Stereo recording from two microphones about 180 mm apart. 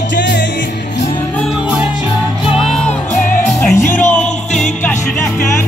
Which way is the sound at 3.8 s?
15° left (ahead or behind).